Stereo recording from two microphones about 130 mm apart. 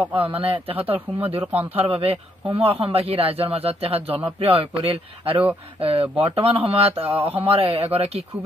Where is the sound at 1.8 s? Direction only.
45° right (ahead or behind).